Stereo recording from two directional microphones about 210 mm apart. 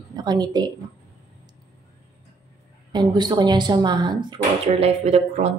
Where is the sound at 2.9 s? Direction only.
20° right (ahead or behind).